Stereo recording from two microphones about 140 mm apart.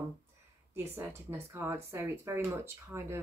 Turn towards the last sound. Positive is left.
turn(degrees=-20)  # may be behind; listen again after turning